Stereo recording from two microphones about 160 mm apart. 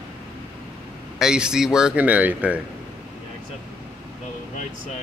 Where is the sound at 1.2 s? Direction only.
5° right (ahead or behind).